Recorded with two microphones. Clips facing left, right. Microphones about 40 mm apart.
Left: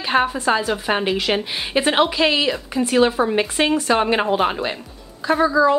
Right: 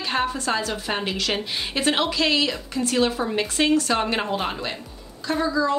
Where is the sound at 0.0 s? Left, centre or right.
Left.